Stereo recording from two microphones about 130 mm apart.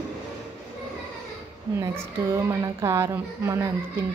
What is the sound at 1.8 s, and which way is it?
A woman's voice, 25° right (ahead or behind).